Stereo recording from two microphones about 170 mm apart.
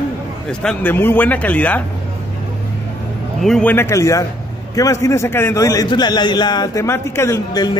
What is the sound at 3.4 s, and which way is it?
A man's voice, 5° left (ahead or behind).